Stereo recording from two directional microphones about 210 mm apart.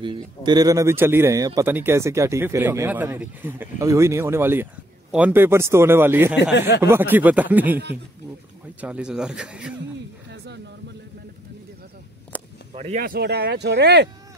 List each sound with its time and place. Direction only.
0.0 s a man's voice: 20° right (ahead or behind)
8.8 s speech: 5° right (ahead or behind)
10.3 s a sound: 50° right (ahead or behind)
12.7 s speech: 35° right (ahead or behind); by 14.0 s 55° right (ahead or behind)